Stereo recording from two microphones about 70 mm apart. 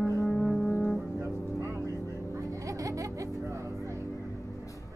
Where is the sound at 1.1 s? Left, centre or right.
Right.